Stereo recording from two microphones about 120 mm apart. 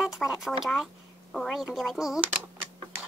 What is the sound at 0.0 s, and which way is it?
Speech, 5° right (ahead or behind).